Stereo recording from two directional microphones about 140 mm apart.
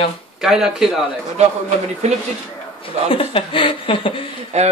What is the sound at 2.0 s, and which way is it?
Speech, 55° right (ahead or behind).